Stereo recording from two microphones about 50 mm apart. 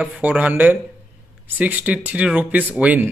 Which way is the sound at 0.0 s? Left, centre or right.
Right.